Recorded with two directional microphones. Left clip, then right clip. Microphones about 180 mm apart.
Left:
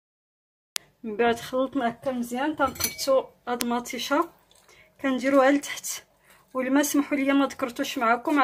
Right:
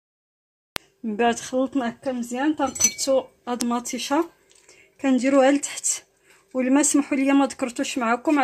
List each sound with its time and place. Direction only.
1.0 s cutlery: 50° right (ahead or behind)